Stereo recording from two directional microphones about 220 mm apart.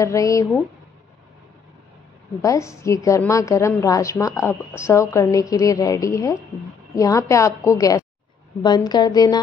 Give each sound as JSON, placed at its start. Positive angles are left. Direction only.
{"t": 0.0, "sound": "a woman's voice", "side_deg": 15}
{"t": 2.4, "sound": "a woman's voice", "side_deg": 15}